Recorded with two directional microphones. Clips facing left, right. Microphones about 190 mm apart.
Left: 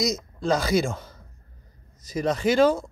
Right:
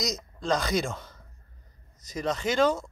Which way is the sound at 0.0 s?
5° left (ahead or behind).